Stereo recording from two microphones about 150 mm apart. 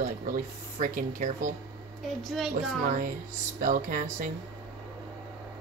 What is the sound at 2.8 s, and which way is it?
Speech, 65° right (ahead or behind).